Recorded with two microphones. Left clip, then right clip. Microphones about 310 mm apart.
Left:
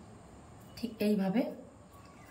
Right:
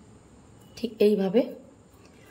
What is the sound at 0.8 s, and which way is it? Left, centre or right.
Speech, centre.